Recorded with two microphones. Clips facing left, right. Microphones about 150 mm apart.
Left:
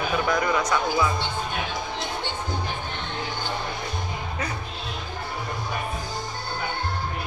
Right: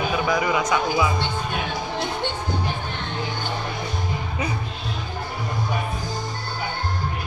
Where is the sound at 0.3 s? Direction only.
5° right (ahead or behind).